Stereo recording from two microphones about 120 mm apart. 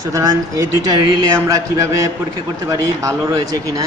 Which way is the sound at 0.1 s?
30° right (ahead or behind).